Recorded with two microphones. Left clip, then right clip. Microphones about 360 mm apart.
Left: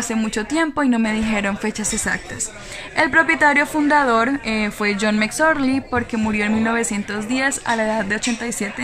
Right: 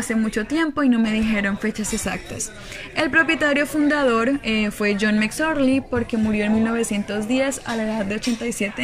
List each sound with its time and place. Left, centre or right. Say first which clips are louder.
0.3 s speech: left 4 dB; centre